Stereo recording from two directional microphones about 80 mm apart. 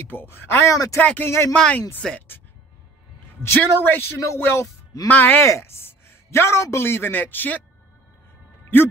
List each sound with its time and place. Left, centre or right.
0.1 s a man's voice: left
1.5 s speech: centre
3.4 s a man's voice: left